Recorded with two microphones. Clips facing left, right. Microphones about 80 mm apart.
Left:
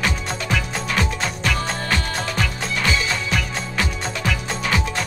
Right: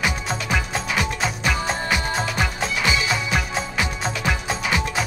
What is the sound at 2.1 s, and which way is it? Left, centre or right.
Music, centre.